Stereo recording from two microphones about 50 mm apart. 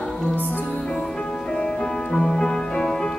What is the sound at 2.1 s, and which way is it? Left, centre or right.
Music, centre.